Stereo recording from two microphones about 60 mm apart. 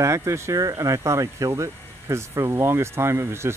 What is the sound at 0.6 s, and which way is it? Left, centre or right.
Speech, right.